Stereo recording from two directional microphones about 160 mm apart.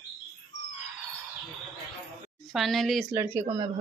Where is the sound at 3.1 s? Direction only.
15° right (ahead or behind).